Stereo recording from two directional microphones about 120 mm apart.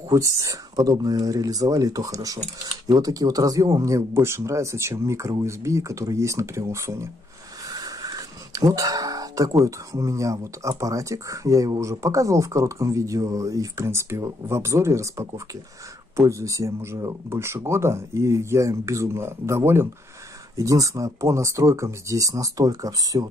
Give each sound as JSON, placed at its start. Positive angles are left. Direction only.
{"t": 0.1, "sound": "speech", "side_deg": -25}
{"t": 7.7, "sound": "a sound", "side_deg": -35}
{"t": 8.7, "sound": "music", "side_deg": -30}
{"t": 9.7, "sound": "speech", "side_deg": -25}